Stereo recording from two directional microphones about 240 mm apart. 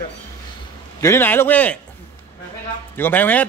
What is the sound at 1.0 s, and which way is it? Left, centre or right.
Speech, centre.